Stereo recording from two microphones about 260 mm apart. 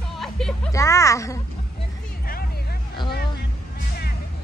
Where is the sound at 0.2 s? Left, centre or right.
Centre.